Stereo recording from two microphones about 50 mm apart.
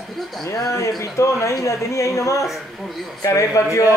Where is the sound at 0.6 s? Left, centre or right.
Left.